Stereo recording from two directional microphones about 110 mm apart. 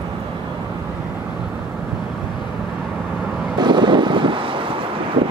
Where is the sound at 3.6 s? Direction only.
45° right (ahead or behind).